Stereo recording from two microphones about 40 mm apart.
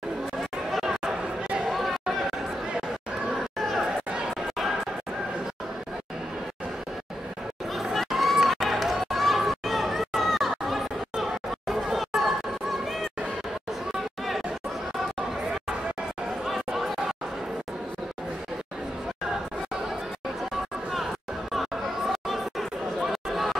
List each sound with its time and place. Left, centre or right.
0.7 s chatter: centre
3.5 s chatter: centre
3.8 s chatter: right
7.7 s run: centre
12.2 s chatter: centre
16.4 s chatter: centre
21.5 s chatter: centre